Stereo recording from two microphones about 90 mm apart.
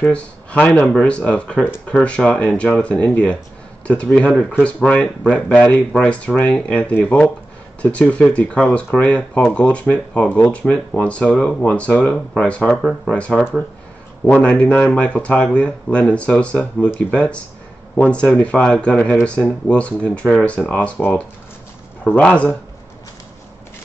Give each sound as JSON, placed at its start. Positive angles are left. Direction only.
{"t": 0.0, "sound": "speech", "side_deg": 10}
{"t": 22.0, "sound": "speech", "side_deg": 15}